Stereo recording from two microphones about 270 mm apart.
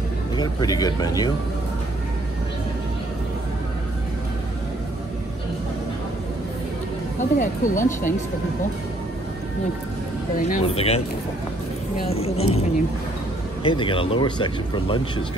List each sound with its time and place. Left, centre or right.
0.4 s speech: centre
7.2 s speech: left
10.3 s speech: left
12.1 s speech: left
13.7 s speech: centre